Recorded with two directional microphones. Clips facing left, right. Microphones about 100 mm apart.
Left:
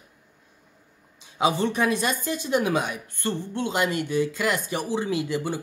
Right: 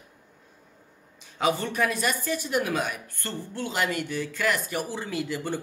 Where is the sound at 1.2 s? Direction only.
20° left (ahead or behind).